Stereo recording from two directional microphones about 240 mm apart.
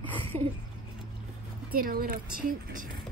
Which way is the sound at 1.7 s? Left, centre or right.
Right.